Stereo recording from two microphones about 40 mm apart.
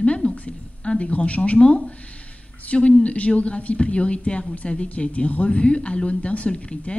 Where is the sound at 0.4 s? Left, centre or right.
Left.